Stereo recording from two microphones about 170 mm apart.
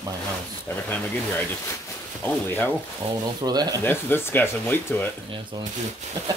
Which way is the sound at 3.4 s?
25° right (ahead or behind).